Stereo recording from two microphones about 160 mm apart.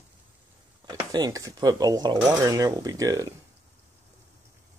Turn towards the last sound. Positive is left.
turn(degrees=-20)  # may be behind; listen again after turning